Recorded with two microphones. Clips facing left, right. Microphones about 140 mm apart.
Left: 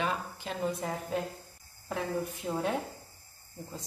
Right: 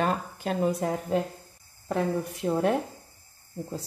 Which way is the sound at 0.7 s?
75° right (ahead or behind).